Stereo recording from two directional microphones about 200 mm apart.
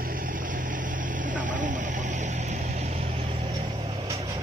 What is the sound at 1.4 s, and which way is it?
Hum, 40° right (ahead or behind).